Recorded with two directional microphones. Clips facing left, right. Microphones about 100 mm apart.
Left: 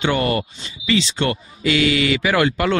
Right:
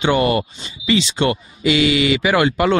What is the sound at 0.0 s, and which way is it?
Speech, 15° right (ahead or behind).